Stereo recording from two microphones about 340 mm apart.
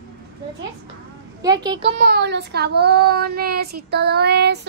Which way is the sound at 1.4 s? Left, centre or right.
Centre.